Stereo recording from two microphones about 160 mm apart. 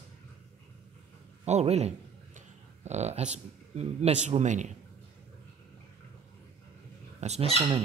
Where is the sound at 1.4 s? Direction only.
45° right (ahead or behind).